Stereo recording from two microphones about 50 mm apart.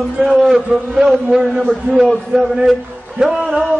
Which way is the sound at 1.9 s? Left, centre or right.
Right.